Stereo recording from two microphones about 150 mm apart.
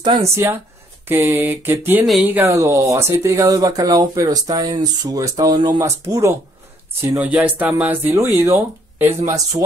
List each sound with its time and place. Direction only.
1.0 s speech: 15° right (ahead or behind)